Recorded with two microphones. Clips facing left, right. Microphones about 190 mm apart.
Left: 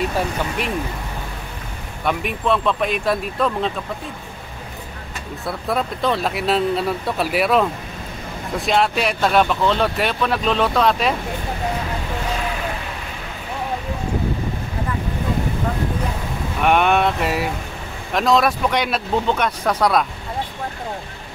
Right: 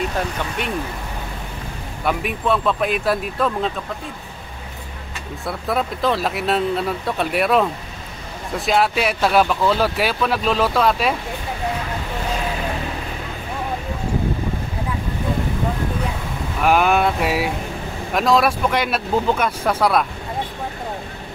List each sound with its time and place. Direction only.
2.0 s speech: centre (ahead or behind)
5.4 s speech: centre (ahead or behind)
16.6 s speech: centre (ahead or behind)